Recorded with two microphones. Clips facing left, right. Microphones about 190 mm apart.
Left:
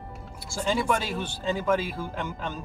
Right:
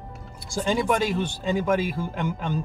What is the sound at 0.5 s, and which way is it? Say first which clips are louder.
Speech: right 3 dB; 15° right (ahead or behind).